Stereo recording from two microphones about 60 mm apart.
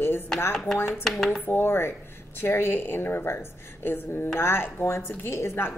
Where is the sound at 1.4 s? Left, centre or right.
Left.